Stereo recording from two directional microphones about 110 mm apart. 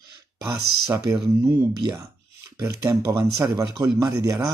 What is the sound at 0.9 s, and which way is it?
Speech, 35° right (ahead or behind).